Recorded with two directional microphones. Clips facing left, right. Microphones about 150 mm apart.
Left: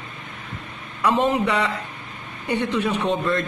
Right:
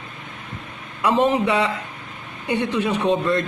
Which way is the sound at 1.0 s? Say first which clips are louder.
Right 2 dB; 20° right (ahead or behind).